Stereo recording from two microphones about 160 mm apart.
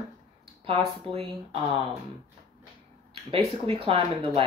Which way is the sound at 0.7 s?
40° right (ahead or behind).